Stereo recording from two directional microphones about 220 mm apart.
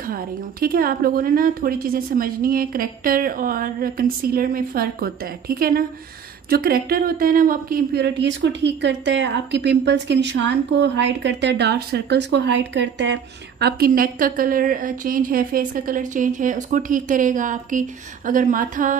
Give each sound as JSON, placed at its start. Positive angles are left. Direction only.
{"t": 0.0, "sound": "speech", "side_deg": -40}